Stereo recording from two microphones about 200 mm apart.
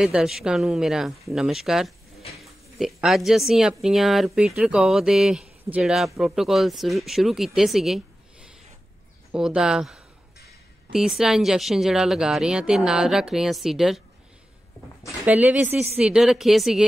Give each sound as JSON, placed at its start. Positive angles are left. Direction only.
{"t": 0.0, "sound": "speech", "side_deg": 0}
{"t": 15.2, "sound": "speech", "side_deg": -5}